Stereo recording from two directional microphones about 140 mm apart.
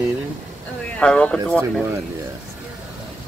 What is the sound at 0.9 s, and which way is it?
Speech, 10° left (ahead or behind).